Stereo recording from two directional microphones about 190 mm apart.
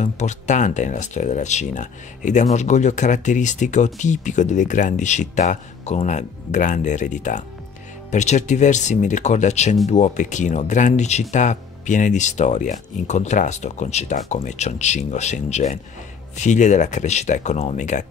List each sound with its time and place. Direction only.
0.0 s speech: 40° left (ahead or behind)